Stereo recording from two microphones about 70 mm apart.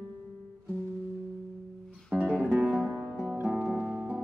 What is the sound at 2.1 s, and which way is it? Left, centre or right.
Music, right.